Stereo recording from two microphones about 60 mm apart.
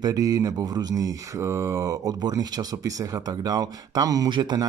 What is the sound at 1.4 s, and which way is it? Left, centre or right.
Speech, right.